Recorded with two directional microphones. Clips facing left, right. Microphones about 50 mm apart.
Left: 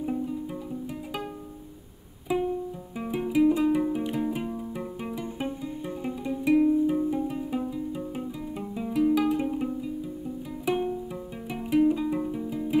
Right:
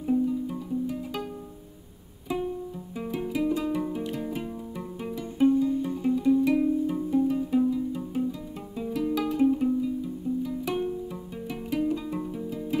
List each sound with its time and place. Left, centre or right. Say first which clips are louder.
0.0 s music: right 5 dB; centre